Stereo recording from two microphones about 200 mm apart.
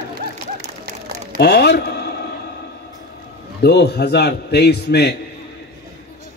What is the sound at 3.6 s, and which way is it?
A man's voice, 55° left (ahead or behind).